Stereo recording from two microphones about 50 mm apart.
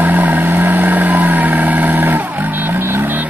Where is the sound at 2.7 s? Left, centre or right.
Right.